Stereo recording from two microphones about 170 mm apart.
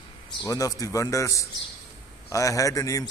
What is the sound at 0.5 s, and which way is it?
A man's voice, 20° left (ahead or behind).